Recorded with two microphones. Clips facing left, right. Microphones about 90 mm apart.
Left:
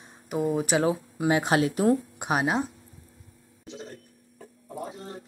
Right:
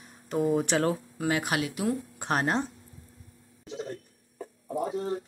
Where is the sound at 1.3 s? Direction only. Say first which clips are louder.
Left 6 dB; 25° left (ahead or behind).